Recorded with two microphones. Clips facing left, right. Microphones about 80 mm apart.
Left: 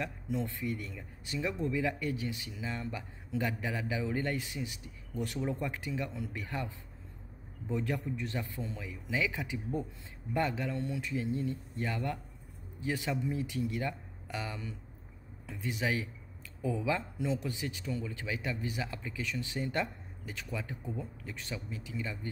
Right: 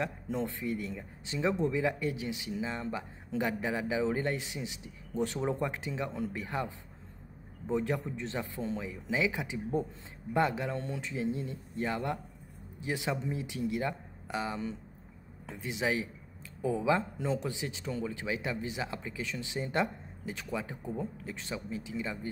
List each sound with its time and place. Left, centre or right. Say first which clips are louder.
0.0 s speech: right 2 dB; right
20.9 s speech: right 7 dB; right
21.3 s speech: right 3 dB; right